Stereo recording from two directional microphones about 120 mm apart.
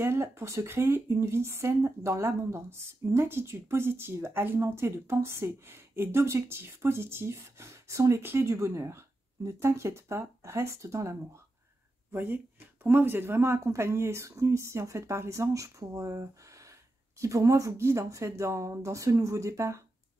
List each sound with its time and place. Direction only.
0.0 s speech: 20° right (ahead or behind)